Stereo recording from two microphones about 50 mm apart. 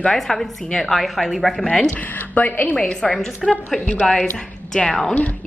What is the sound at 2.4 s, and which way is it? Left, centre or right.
Speech, left.